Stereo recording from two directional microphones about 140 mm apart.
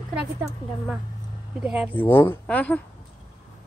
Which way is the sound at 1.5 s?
5° right (ahead or behind).